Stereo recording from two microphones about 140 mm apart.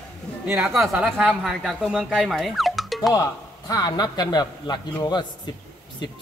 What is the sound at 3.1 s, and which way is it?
A man's voice, 25° left (ahead or behind).